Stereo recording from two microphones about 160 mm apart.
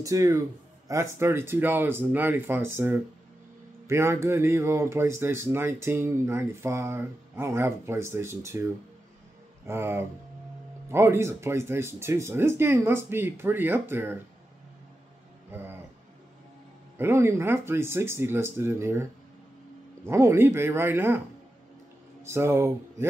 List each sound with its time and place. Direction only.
0.0 s speech: 20° right (ahead or behind)
15.5 s speech: 15° right (ahead or behind)
17.0 s speech: 15° right (ahead or behind)
20.1 s speech: 15° right (ahead or behind)
22.2 s speech: 15° right (ahead or behind)